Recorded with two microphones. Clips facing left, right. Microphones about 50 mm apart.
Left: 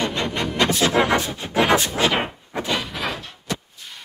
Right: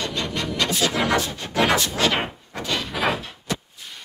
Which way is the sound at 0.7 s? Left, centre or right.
Left.